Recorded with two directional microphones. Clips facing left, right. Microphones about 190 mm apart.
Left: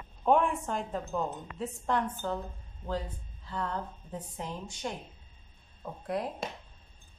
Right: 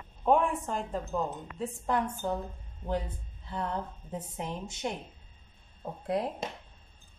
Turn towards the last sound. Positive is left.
turn(degrees=-25)  # may be behind; listen again after turning